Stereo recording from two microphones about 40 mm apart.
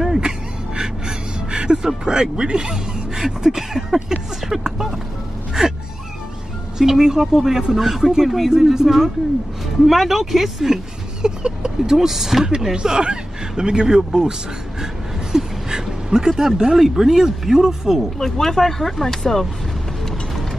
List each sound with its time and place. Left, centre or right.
0.0 s a sound: centre
0.7 s music: centre
1.9 s speech: centre
6.8 s speech: centre
11.2 s speech: centre
15.3 s a sound: centre
16.7 s speech: centre
18.2 s speech: centre